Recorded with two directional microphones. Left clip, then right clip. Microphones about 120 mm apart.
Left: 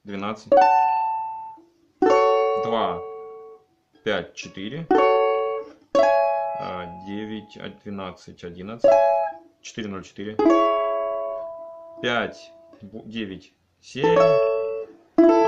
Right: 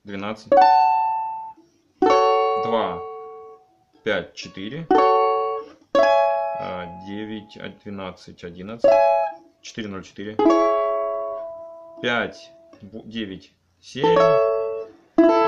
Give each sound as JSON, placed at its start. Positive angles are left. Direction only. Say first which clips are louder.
{"t": 0.0, "sound": "speech", "louder": "even", "side_deg": 0}
{"t": 0.5, "sound": "music", "louder": "right 2 dB", "side_deg": -20}
{"t": 2.6, "sound": "speech", "louder": "right 1 dB", "side_deg": 0}
{"t": 3.0, "sound": "music", "louder": "right 1 dB", "side_deg": -35}
{"t": 4.0, "sound": "speech", "louder": "right 1 dB", "side_deg": 0}
{"t": 5.1, "sound": "music", "louder": "right 1 dB", "side_deg": -40}
{"t": 6.6, "sound": "speech", "louder": "right 1 dB", "side_deg": -5}
{"t": 8.8, "sound": "speech", "louder": "right 1 dB", "side_deg": -25}
{"t": 9.7, "sound": "speech", "louder": "right 1 dB", "side_deg": 0}
{"t": 10.3, "sound": "music", "louder": "right 1 dB", "side_deg": -30}
{"t": 12.0, "sound": "speech", "louder": "right 1 dB", "side_deg": 0}
{"t": 14.2, "sound": "music", "louder": "right 1 dB", "side_deg": -25}